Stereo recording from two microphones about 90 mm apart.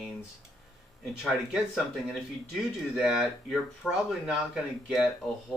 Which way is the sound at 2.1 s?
5° right (ahead or behind).